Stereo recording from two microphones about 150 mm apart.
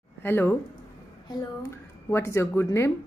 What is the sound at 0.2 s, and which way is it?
Speech, 15° left (ahead or behind).